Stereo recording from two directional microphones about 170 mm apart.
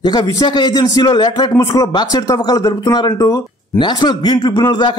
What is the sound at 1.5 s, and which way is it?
Speech, 15° left (ahead or behind).